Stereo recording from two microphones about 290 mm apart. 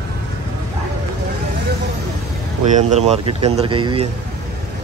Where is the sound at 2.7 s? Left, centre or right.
Right.